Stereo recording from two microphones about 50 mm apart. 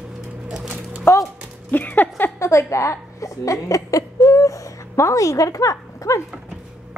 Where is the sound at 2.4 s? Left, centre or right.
Left.